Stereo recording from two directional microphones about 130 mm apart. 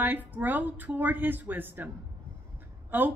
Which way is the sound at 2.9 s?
15° right (ahead or behind).